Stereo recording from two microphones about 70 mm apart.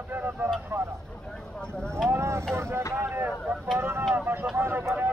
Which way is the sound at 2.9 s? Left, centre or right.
Right.